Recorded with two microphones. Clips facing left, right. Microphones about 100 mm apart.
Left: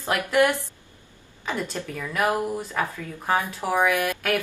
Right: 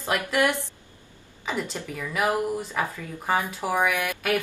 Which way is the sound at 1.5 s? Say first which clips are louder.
Left 1 dB; 15° right (ahead or behind).